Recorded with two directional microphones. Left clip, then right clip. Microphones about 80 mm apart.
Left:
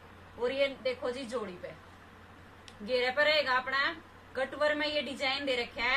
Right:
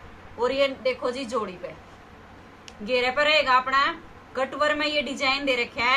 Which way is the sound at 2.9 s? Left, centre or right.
Centre.